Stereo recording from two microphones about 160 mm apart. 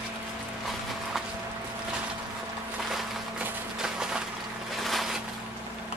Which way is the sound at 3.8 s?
5° right (ahead or behind).